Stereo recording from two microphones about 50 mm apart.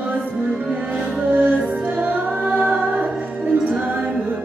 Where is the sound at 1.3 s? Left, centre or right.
Right.